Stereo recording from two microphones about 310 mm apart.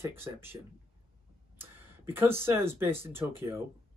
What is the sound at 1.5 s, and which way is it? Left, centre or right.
Speech, centre.